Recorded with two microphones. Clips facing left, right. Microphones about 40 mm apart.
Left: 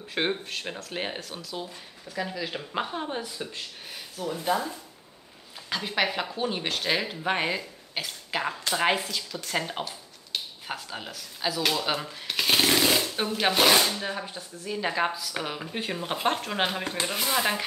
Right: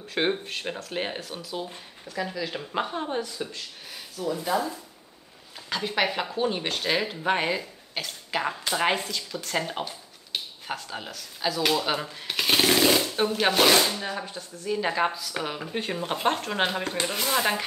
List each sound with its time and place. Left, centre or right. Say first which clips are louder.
0.1 s speech: right 2 dB; centre
2.0 s speech: right 1 dB; centre
4.2 s speech: right 3 dB; left
5.7 s speech: right 1 dB; centre